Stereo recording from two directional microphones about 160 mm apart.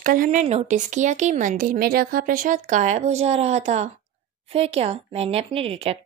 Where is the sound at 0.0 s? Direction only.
60° right (ahead or behind).